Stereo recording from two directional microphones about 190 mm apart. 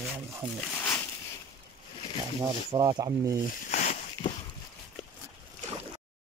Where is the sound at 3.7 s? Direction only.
40° left (ahead or behind).